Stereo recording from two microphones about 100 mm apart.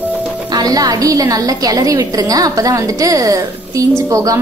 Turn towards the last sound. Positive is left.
turn(degrees=-35)  # may be behind; listen again after turning